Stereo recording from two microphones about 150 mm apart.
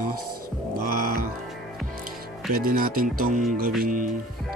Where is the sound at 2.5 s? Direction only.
80° right; by 4.0 s 60° right (ahead or behind).